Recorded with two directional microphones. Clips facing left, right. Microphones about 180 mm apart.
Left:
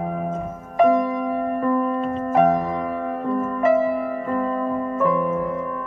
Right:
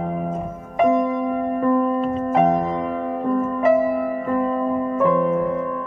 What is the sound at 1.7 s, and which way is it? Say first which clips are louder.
Keyboard: right 2 dB; 5° right (ahead or behind).